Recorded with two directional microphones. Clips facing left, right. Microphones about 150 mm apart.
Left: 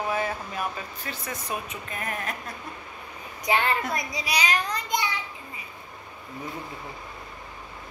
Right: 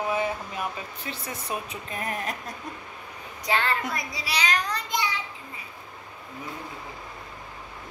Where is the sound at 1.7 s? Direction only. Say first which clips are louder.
Right 1 dB; 30° right (ahead or behind).